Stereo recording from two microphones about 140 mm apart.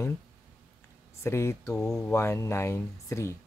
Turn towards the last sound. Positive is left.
turn(degrees=20)  # may be behind; listen again after turning